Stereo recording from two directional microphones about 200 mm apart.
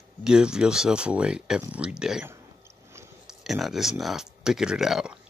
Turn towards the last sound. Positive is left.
turn(degrees=-5)  # may be behind; listen again after turning